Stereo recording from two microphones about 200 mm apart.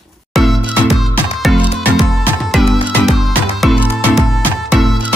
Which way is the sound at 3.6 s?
Centre (ahead or behind).